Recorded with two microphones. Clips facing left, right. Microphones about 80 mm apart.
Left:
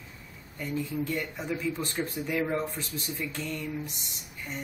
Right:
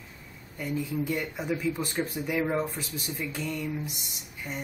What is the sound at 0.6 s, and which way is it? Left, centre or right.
Speech, centre.